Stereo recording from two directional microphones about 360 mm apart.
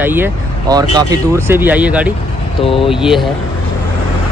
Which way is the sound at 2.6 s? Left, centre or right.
Centre.